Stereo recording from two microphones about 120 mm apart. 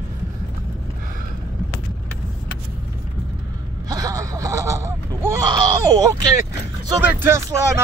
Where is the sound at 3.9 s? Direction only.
30° right (ahead or behind).